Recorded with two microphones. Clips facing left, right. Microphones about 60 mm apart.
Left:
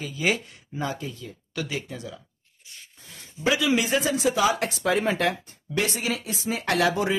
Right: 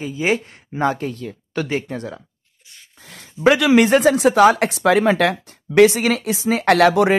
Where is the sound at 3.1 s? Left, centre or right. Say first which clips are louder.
Right 10 dB; right.